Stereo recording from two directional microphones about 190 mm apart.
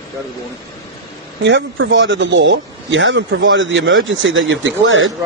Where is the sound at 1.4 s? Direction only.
70° right (ahead or behind); by 5.1 s 90° right.